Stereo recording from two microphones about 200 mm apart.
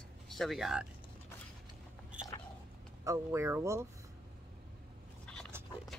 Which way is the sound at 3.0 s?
15° right (ahead or behind).